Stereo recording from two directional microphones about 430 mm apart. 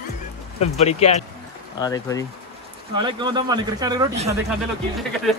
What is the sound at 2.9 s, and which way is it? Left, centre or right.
Speech, centre.